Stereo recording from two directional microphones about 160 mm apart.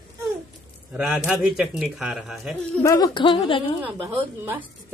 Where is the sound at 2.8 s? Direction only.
25° left (ahead or behind).